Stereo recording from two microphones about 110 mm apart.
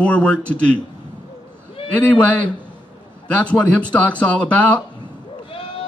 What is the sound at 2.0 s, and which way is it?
A man's voice, 15° left (ahead or behind).